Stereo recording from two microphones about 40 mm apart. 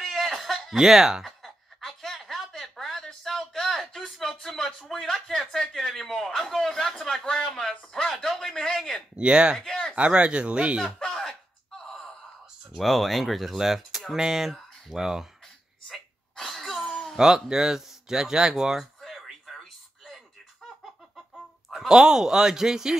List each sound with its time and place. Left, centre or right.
0.0 s chuckle: centre
0.7 s speech: centre
1.2 s chuckle: centre
4.4 s a sound: centre
5.5 s a man's voice: centre
9.1 s speech: right
9.6 s a sound: centre
9.9 s speech: right
11.8 s gasp: centre
12.8 s speech: centre
15.9 s sneeze: centre
17.2 s speech: centre
18.8 s a sound: centre
21.6 s speech: centre